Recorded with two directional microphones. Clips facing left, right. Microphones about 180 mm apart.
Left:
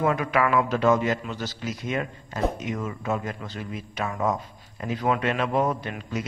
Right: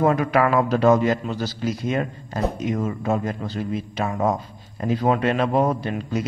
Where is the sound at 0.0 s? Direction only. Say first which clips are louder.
Right 4 dB; 35° right (ahead or behind).